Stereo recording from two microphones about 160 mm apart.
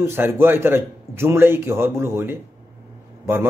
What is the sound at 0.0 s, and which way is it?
Speech, 15° right (ahead or behind).